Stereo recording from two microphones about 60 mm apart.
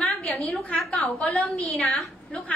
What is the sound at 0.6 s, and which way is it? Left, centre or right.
A woman's voice, left.